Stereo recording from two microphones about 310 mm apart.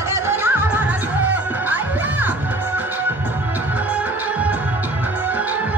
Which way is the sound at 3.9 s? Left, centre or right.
Centre.